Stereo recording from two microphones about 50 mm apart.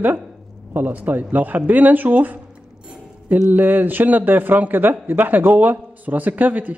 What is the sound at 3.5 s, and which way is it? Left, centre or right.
Speech, right.